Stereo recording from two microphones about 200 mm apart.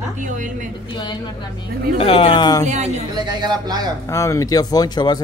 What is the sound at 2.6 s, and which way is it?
Speech, 35° right (ahead or behind).